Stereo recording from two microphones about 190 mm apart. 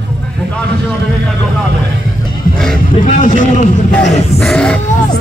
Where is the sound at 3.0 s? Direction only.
40° left (ahead or behind).